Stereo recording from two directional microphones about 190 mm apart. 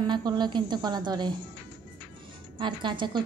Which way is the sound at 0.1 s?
25° right (ahead or behind).